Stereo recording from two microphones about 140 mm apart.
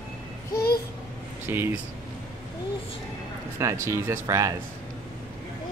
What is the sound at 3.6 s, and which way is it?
Speech, 20° right (ahead or behind).